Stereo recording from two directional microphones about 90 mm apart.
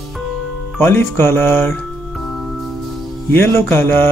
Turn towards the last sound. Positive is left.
turn(degrees=25)  # may be behind; listen again after turning